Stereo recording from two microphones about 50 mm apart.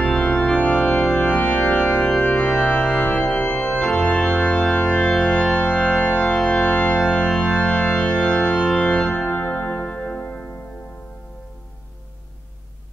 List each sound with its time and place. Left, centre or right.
0.1 s organ: centre
1.3 s organ: left
3.5 s organ: centre
9.3 s music: left